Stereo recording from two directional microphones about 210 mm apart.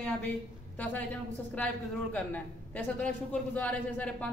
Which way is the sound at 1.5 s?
5° left (ahead or behind).